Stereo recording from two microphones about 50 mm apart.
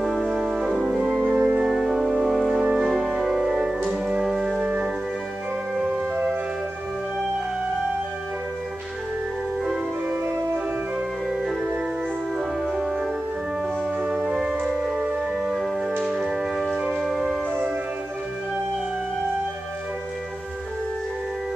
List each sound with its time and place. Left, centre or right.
0.0 s brass instrument: centre
1.2 s music: right
1.7 s music: centre
2.0 s music: centre
2.3 s music: centre
3.8 s music: right
4.2 s music: centre
12.7 s music: centre
14.2 s music: centre